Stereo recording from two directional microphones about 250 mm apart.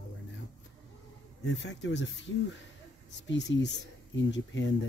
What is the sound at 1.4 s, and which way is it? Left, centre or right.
Speech, left.